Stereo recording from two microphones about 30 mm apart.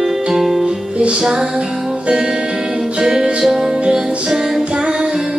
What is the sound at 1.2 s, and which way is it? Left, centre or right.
Music, right.